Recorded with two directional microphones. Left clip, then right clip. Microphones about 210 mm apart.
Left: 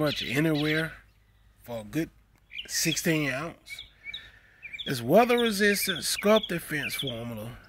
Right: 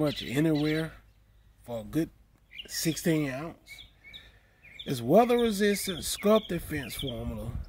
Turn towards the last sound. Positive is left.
turn(degrees=0)  # may be behind; listen again after turning